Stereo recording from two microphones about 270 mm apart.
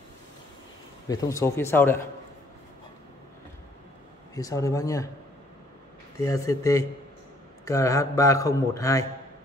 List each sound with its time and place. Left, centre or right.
1.0 s a man's voice: centre
4.4 s a man's voice: centre
6.1 s a man's voice: centre